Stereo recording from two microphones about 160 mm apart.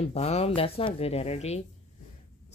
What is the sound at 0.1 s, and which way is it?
Speech, 40° left (ahead or behind).